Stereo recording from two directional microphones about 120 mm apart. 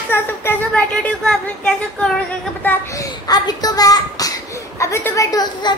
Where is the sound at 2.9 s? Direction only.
35° left (ahead or behind).